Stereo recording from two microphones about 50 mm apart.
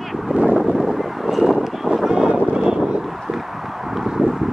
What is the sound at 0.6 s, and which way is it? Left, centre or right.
Vehicle, centre.